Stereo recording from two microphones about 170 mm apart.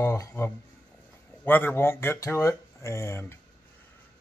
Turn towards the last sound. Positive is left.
turn(degrees=15)  # may be behind; listen again after turning